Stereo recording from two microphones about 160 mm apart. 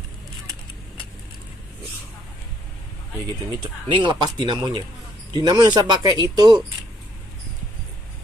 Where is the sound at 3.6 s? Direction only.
30° right (ahead or behind).